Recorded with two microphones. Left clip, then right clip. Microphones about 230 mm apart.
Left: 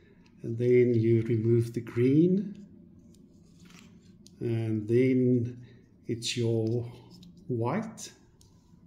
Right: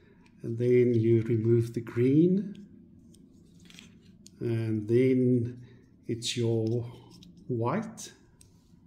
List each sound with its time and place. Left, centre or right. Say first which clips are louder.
0.4 s speech: left 1 dB; centre
4.4 s speech: even; centre